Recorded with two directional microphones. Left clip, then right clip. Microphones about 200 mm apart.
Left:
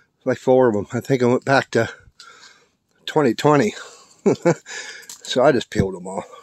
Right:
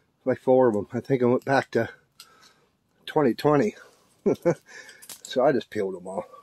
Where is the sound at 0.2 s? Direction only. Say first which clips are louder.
Left 4 dB; 30° left (ahead or behind).